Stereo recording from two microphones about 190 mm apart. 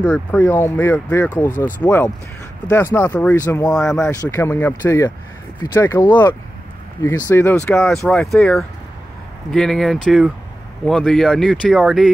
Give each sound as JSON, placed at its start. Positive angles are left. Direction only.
{"t": 0.0, "sound": "speech", "side_deg": 10}
{"t": 4.1, "sound": "speech", "side_deg": 15}